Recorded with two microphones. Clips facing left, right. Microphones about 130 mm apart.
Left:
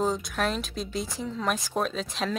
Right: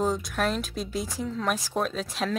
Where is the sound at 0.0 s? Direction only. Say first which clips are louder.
Right 1 dB; centre (ahead or behind).